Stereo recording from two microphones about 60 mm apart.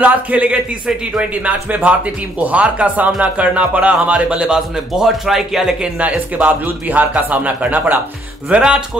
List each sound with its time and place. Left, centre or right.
0.0 s speech: right; by 5.9 s centre
5.9 s speech: right